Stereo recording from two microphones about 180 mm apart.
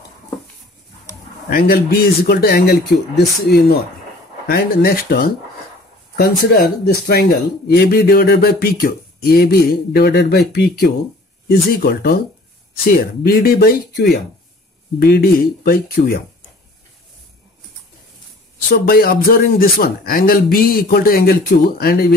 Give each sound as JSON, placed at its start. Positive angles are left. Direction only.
{"t": 1.5, "sound": "speech", "side_deg": 60}
{"t": 13.2, "sound": "speech", "side_deg": 55}
{"t": 18.7, "sound": "speech", "side_deg": 55}